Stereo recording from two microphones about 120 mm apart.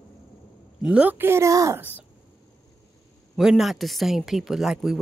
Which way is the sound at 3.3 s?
5° right (ahead or behind).